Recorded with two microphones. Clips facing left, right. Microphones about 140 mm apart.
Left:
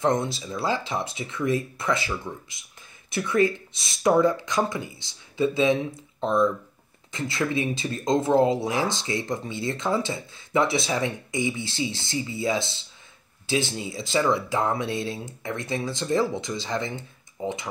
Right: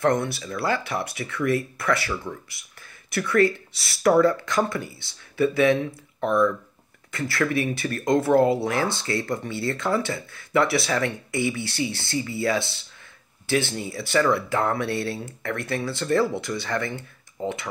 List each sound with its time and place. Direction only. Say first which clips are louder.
0.0 s speech: right 1 dB; 20° left (ahead or behind)
13.5 s speech: right 2 dB; 60° right (ahead or behind)
14.1 s speech: right 2 dB; 15° left (ahead or behind)